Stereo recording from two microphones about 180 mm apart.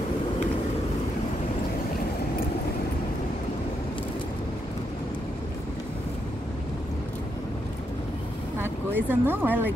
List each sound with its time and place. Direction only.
8.5 s speech: 10° right (ahead or behind)